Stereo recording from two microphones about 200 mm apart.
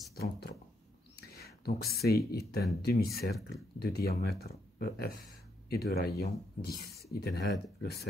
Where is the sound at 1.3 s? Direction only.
50° left (ahead or behind).